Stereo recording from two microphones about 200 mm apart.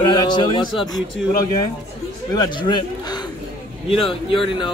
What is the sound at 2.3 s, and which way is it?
A man's voice, 20° left (ahead or behind).